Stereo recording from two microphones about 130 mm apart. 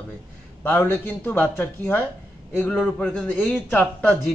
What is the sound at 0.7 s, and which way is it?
Speech, 15° left (ahead or behind).